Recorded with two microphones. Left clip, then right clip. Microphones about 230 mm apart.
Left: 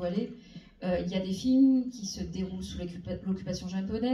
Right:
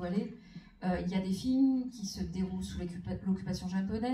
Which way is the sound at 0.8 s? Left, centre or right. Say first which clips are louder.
Left 5 dB; centre.